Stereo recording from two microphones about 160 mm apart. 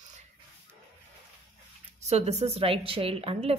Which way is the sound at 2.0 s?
45° right (ahead or behind).